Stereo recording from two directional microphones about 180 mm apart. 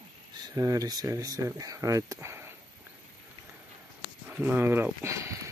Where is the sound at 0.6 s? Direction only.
20° right (ahead or behind).